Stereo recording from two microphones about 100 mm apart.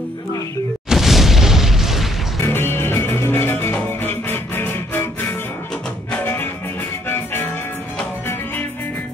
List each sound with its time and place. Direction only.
0.8 s boom: 5° right (ahead or behind)
2.4 s music: 25° left (ahead or behind)
6.2 s music: 20° left (ahead or behind)